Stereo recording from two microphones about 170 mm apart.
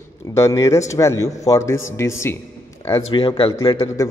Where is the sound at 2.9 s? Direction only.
30° left (ahead or behind).